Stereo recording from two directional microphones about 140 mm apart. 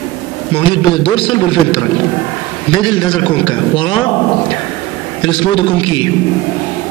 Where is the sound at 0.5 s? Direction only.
40° left (ahead or behind).